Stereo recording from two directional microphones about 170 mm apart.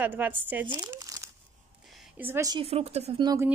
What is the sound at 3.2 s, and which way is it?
Speech, 20° right (ahead or behind).